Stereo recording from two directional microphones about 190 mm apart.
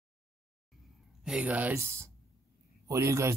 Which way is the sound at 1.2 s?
5° right (ahead or behind).